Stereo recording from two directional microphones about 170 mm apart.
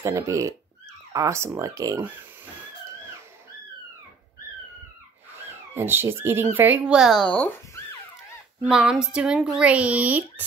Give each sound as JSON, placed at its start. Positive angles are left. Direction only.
{"t": 0.0, "sound": "speech", "side_deg": -20}
{"t": 5.4, "sound": "speech", "side_deg": -10}
{"t": 8.6, "sound": "speech", "side_deg": -5}